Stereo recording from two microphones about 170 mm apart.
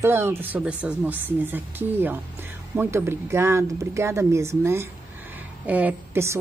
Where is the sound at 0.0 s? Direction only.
15° right (ahead or behind).